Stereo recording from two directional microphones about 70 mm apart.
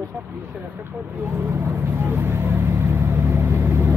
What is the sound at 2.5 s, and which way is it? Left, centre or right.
Vehicle, right.